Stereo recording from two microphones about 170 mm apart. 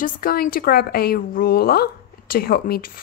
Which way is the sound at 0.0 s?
55° left (ahead or behind).